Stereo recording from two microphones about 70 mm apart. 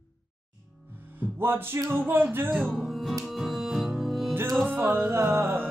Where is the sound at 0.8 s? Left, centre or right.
Right.